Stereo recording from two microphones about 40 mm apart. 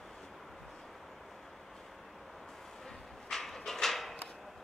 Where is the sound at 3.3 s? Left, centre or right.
Centre.